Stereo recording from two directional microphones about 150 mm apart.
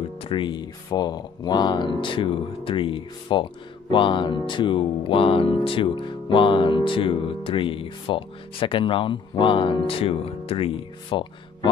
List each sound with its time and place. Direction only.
0.2 s speech: 35° left (ahead or behind)